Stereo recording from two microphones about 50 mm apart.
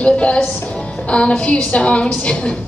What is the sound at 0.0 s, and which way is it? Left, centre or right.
A woman's voice, left.